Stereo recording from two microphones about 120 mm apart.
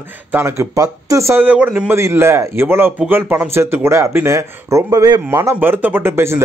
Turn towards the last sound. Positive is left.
turn(degrees=-20)  # may be behind; listen again after turning